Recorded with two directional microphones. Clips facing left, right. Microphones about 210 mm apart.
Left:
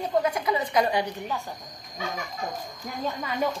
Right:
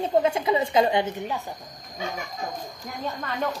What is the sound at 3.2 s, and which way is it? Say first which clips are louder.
Speech: left 1 dB; 10° left (ahead or behind).